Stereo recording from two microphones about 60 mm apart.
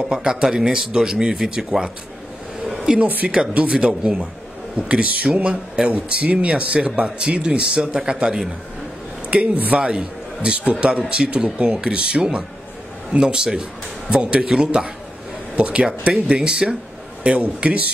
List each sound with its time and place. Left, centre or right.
0.1 s speech: centre
2.7 s a sound: centre
3.0 s speech: right
9.3 s speech: right